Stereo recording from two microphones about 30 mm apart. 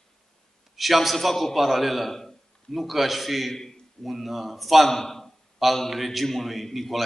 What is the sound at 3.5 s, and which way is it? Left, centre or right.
Speech, centre.